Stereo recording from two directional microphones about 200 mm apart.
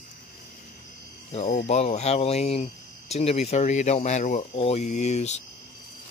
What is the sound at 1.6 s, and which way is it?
Speech, 30° left (ahead or behind).